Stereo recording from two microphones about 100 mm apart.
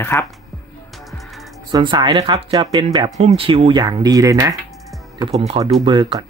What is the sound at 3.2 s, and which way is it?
Speech, 75° right (ahead or behind).